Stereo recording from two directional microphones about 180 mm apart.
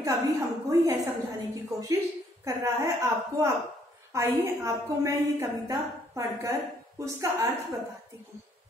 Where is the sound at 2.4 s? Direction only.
15° right (ahead or behind).